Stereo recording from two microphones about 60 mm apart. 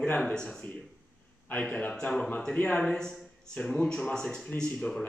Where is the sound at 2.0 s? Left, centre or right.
Centre.